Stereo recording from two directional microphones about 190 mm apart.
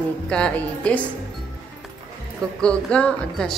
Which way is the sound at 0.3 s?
5° left (ahead or behind).